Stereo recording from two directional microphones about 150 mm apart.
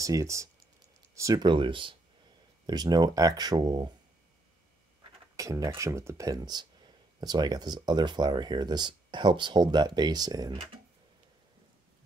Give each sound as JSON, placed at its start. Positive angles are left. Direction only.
{"t": 0.0, "sound": "speech", "side_deg": -20}
{"t": 5.3, "sound": "speech", "side_deg": -20}